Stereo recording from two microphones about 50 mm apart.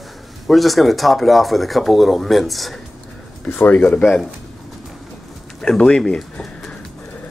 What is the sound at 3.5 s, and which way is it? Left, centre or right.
Speech, left.